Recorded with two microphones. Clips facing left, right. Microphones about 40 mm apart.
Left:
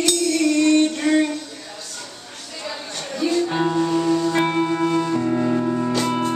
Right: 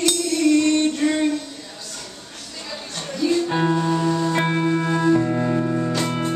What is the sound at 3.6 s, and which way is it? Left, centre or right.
Music, centre.